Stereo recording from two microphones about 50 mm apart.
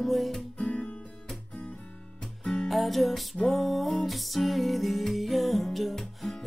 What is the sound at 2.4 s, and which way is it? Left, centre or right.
Music, centre.